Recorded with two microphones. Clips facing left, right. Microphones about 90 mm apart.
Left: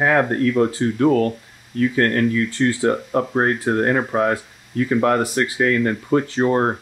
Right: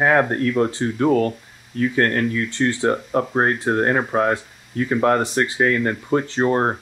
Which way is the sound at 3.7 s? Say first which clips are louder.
Even; 30° right (ahead or behind).